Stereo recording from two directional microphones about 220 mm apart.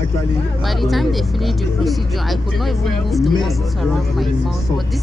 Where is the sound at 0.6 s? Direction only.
Centre (ahead or behind).